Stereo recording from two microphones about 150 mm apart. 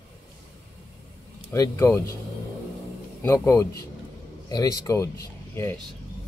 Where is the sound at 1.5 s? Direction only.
20° left (ahead or behind).